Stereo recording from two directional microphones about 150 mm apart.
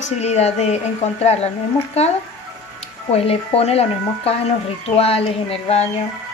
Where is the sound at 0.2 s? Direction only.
45° left (ahead or behind).